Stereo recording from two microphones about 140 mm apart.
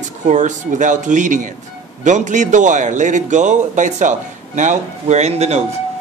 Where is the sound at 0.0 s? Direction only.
60° right (ahead or behind).